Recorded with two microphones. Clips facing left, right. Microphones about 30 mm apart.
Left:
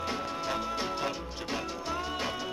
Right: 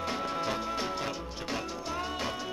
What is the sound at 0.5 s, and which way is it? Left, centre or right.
Music, centre.